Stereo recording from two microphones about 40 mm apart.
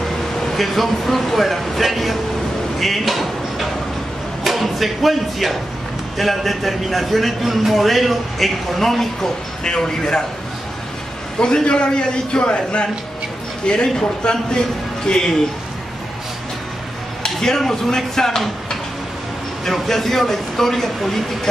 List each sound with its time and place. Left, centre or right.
0.5 s a man's voice: centre
9.6 s a man's voice: centre
11.3 s a man's voice: left
17.2 s a man's voice: centre